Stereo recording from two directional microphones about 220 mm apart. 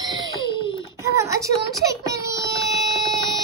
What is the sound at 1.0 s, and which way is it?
Speech, 15° right (ahead or behind).